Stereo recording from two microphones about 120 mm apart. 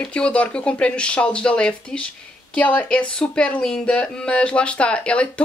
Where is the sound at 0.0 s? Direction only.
10° left (ahead or behind).